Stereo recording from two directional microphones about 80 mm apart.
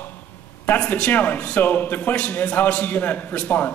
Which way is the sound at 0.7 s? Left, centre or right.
Centre.